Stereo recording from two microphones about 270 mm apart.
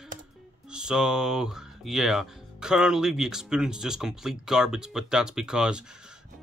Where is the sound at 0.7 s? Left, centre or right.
Centre.